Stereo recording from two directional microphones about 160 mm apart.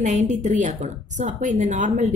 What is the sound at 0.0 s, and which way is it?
A woman's voice, 50° right (ahead or behind).